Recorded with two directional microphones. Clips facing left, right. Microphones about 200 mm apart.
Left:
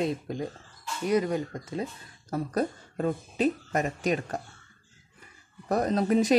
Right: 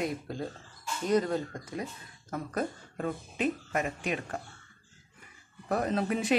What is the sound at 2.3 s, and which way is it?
Speech, 35° left (ahead or behind).